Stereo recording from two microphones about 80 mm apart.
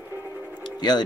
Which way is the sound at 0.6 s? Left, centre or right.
Left.